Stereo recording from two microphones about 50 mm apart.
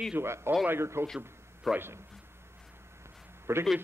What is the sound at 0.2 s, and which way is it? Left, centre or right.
Speech, right.